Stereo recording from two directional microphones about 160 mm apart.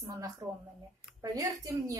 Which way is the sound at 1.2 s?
20° right (ahead or behind).